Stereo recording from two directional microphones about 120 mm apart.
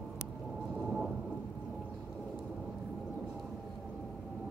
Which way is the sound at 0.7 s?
5° right (ahead or behind).